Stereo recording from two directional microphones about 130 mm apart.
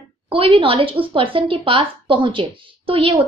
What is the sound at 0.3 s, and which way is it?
A woman's voice, 45° right (ahead or behind).